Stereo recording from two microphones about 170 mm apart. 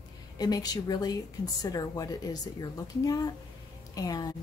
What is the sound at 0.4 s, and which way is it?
A woman's voice, 20° left (ahead or behind).